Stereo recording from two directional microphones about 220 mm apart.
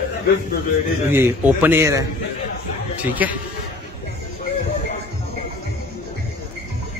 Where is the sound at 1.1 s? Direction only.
10° right (ahead or behind).